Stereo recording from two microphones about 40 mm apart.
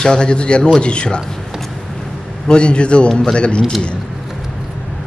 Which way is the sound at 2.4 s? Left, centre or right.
Left.